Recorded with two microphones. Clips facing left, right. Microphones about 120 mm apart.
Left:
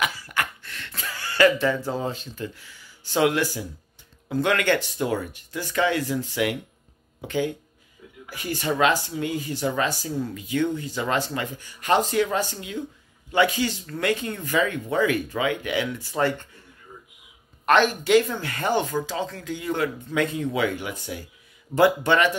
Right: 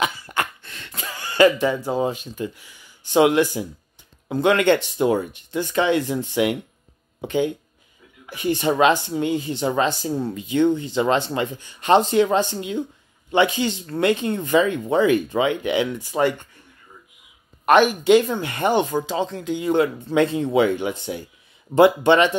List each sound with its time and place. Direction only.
0.0 s a sound: 25° right (ahead or behind)
4.3 s speech: 20° right (ahead or behind)
17.6 s speech: 15° right (ahead or behind)